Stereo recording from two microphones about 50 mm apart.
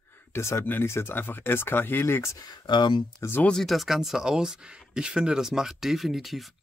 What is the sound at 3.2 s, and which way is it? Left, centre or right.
Speech, left.